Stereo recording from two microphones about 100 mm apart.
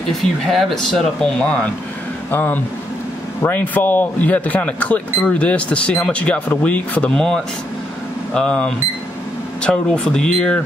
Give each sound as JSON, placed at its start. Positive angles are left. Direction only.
{"t": 0.5, "sound": "speech", "side_deg": 0}
{"t": 2.3, "sound": "speech", "side_deg": 20}